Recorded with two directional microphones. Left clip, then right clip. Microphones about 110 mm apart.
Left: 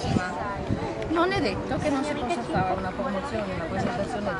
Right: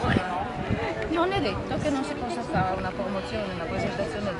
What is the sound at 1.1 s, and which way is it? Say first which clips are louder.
Speech: left 2 dB; 5° left (ahead or behind).